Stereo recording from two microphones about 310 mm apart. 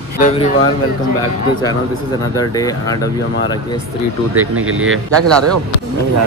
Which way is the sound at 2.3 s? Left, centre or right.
Centre.